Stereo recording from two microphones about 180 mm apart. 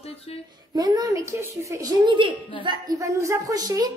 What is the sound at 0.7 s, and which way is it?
A woman's voice, 20° right (ahead or behind).